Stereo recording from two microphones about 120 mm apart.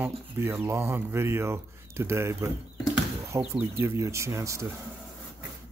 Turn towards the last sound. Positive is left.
turn(degrees=-25)  # may be behind; listen again after turning